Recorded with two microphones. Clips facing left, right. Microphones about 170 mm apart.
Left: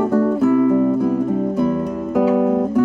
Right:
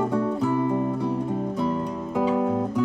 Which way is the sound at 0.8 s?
55° left (ahead or behind).